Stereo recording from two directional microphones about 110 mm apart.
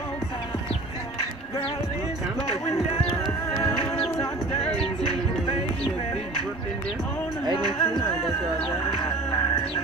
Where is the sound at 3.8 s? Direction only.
55° left (ahead or behind).